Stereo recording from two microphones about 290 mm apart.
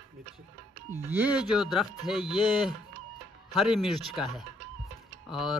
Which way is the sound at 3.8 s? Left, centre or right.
Centre.